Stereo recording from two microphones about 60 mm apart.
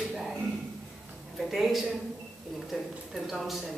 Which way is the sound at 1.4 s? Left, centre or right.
Centre.